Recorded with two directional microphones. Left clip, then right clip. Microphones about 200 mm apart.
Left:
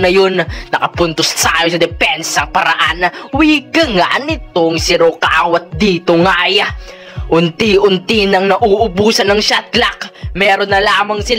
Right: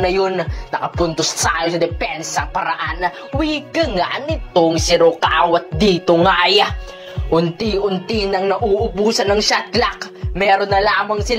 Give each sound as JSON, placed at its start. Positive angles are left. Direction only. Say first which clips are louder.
{"t": 0.0, "sound": "a man's voice", "louder": "left 6 dB", "side_deg": 35}
{"t": 7.2, "sound": "speech", "louder": "left 6 dB", "side_deg": 35}